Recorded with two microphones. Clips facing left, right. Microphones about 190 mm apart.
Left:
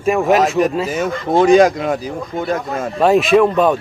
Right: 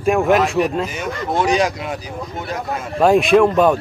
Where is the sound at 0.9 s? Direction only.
50° left (ahead or behind).